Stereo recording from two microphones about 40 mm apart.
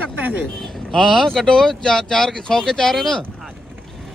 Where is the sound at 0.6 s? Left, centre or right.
Centre.